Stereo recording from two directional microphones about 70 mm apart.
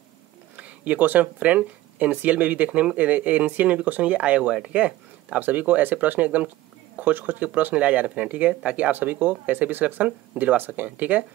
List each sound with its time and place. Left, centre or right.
0.6 s speech: right